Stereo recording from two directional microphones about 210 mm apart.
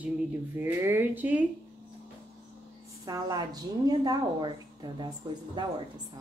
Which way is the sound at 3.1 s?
20° right (ahead or behind).